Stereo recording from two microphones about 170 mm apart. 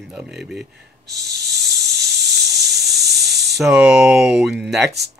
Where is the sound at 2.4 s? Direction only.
Centre (ahead or behind).